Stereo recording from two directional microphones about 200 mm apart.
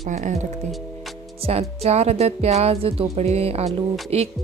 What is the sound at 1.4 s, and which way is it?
Speech, 30° right (ahead or behind).